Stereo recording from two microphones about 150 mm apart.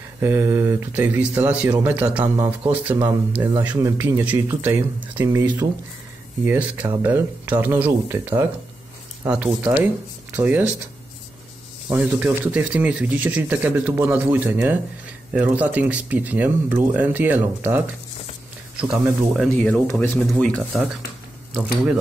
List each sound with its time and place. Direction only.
0.2 s speech: 15° right (ahead or behind)
11.9 s speech: 10° right (ahead or behind)
19.5 s speech: 10° left (ahead or behind)